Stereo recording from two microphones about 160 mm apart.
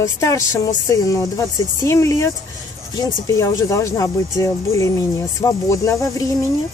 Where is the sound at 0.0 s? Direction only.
20° left (ahead or behind).